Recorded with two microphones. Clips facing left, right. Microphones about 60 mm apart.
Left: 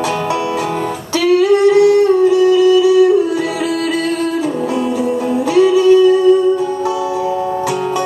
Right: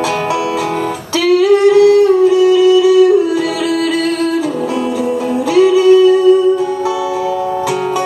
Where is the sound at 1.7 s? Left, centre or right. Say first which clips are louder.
Right 3 dB; left.